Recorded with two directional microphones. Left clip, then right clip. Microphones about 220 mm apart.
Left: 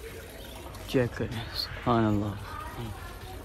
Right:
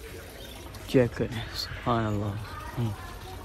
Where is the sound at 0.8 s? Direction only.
15° left (ahead or behind).